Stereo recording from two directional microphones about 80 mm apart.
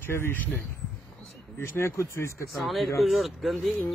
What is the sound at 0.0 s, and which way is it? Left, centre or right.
Speech, left.